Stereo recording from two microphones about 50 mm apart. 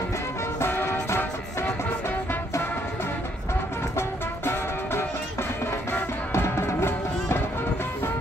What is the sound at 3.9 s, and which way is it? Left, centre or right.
Music, left.